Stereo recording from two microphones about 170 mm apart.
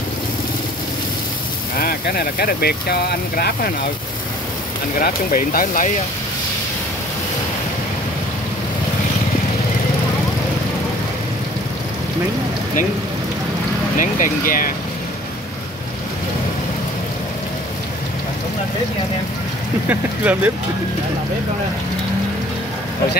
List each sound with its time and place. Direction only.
1.8 s speech: 60° left (ahead or behind)
5.0 s speech: 60° left (ahead or behind)
13.9 s speech: 50° left (ahead or behind)
19.9 s speech: 10° right (ahead or behind)